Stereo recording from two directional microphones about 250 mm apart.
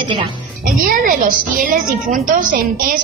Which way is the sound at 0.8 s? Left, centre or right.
Right.